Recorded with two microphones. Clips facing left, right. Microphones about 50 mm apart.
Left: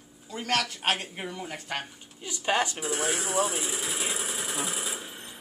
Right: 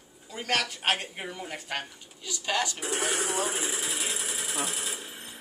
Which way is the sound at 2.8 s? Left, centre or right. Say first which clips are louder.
Even; right.